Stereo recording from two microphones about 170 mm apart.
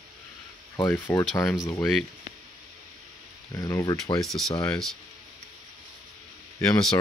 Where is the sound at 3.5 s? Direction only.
15° left (ahead or behind).